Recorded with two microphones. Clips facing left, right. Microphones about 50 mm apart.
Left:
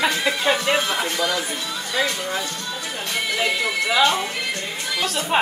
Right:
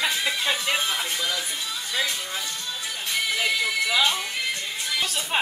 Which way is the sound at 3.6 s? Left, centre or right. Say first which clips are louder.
Left 3 dB; left.